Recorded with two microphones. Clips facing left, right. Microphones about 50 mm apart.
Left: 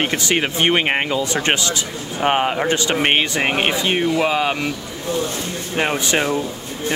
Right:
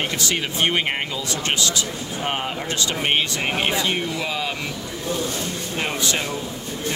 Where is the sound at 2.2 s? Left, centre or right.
Left.